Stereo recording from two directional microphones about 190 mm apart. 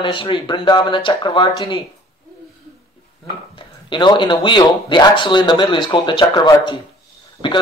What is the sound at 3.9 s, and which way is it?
Speech, 25° left (ahead or behind).